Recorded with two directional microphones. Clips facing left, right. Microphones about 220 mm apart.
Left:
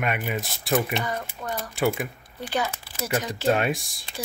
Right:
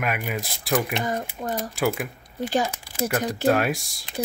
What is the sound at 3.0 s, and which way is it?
Speech, 55° right (ahead or behind).